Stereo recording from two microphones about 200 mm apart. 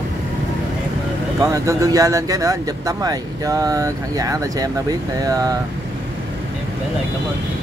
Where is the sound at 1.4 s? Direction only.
15° right (ahead or behind).